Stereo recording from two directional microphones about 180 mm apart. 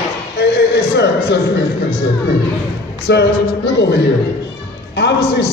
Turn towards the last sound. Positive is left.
turn(degrees=70)  # may be behind; listen again after turning